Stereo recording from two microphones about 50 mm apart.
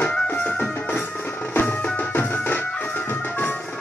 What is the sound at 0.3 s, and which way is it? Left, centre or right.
Music, left.